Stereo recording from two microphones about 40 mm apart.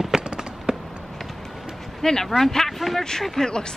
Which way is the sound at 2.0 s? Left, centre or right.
Centre.